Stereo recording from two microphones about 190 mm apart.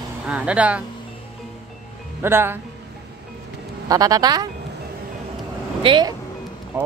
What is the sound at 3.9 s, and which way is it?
Speech, 20° right (ahead or behind).